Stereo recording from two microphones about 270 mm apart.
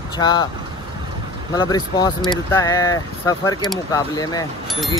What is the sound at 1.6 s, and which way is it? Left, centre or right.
Speech, centre.